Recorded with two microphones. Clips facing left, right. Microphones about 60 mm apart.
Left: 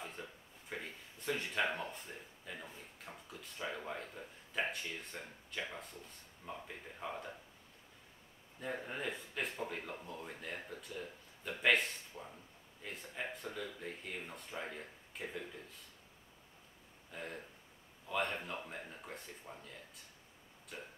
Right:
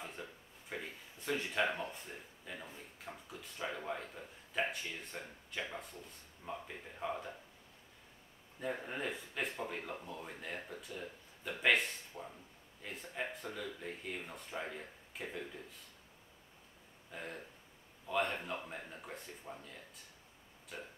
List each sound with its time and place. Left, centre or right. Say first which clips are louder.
0.0 s speech: even; centre
8.5 s speech: right 2 dB; centre
17.1 s speech: even; centre